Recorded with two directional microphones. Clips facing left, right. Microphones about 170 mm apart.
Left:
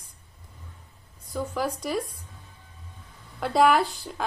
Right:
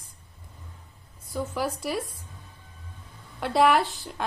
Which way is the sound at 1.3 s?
5° right (ahead or behind).